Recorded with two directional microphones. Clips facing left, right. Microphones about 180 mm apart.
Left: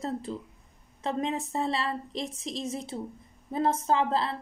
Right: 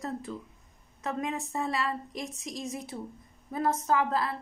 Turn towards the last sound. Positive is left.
turn(degrees=25)  # may be behind; listen again after turning